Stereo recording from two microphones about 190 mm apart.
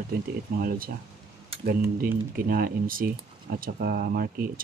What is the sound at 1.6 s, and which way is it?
Speech, 50° right (ahead or behind).